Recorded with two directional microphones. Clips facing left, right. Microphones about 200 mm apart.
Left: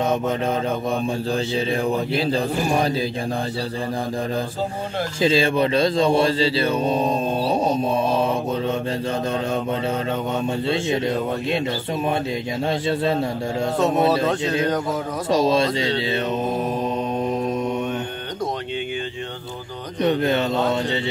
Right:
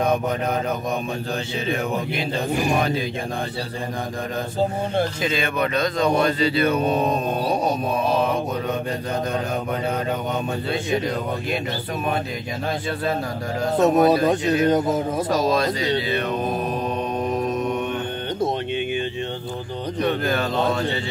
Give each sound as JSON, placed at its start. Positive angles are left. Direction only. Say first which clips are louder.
{"t": 1.3, "sound": "speech", "louder": "left 2 dB", "side_deg": 35}
{"t": 5.2, "sound": "mantra", "louder": "left 5 dB", "side_deg": 30}
{"t": 10.7, "sound": "mantra", "louder": "left 1 dB", "side_deg": 25}
{"t": 12.8, "sound": "mantra", "louder": "left 4 dB", "side_deg": 25}
{"t": 17.2, "sound": "mantra", "louder": "right 1 dB", "side_deg": 25}
{"t": 20.0, "sound": "mantra", "louder": "left 3 dB", "side_deg": 25}